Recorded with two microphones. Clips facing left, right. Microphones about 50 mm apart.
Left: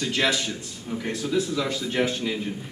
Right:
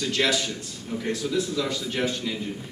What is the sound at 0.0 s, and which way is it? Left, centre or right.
A man's voice, centre.